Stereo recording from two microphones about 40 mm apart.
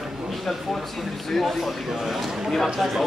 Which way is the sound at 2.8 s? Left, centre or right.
Centre.